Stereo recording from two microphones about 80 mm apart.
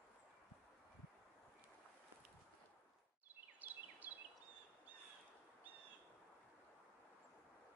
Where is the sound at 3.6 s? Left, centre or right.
Right.